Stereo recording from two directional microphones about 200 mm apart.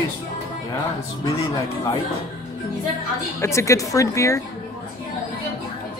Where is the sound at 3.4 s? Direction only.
15° left (ahead or behind).